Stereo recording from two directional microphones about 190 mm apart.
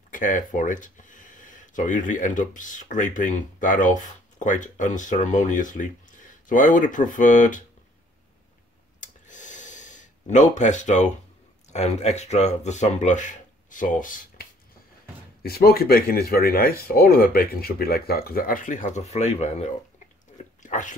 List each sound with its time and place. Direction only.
0.1 s speech: 45° left (ahead or behind)
9.0 s gasp: 40° left (ahead or behind)
11.7 s speech: 35° left (ahead or behind)